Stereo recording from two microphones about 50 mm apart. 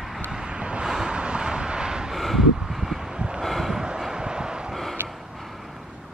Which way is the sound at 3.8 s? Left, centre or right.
Centre.